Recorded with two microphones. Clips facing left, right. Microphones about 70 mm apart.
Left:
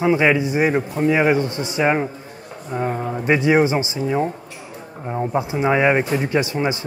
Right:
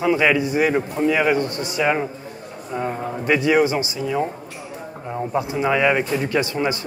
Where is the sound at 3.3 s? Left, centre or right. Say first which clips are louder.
Left 1 dB; left.